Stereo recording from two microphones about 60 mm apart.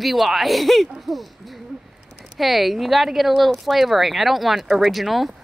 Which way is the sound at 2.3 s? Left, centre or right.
Centre.